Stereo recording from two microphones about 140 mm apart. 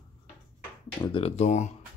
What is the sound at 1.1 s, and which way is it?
Speech, 50° left (ahead or behind).